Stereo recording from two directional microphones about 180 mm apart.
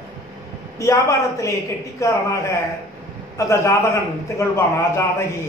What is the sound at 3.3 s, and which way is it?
A man's voice, 15° left (ahead or behind).